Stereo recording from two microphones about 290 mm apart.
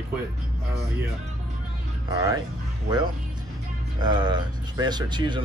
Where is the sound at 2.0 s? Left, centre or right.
Centre.